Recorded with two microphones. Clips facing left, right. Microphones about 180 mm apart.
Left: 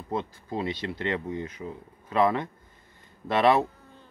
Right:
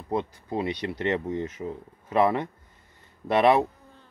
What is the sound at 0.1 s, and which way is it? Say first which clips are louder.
Speech: right 3 dB; 20° right (ahead or behind).